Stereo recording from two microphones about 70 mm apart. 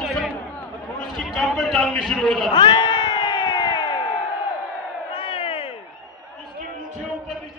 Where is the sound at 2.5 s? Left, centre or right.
Left.